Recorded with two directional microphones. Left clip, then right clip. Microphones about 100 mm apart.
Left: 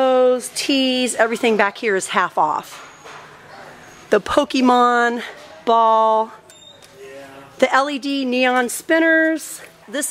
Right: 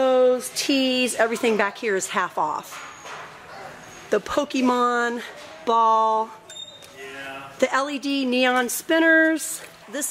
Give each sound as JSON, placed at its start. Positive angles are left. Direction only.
{"t": 0.0, "sound": "speech", "side_deg": 10}
{"t": 4.1, "sound": "speech", "side_deg": 20}
{"t": 7.5, "sound": "speech", "side_deg": 15}
{"t": 8.1, "sound": "a sound", "side_deg": 0}
{"t": 9.9, "sound": "speech", "side_deg": 15}